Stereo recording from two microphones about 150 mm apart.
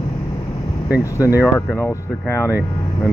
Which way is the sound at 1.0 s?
20° left (ahead or behind).